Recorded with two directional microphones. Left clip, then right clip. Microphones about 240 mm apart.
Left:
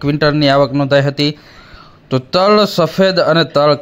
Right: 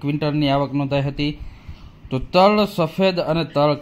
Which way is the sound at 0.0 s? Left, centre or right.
Centre.